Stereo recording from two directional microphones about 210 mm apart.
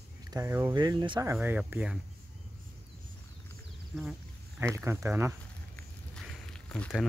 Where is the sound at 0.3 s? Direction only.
15° right (ahead or behind).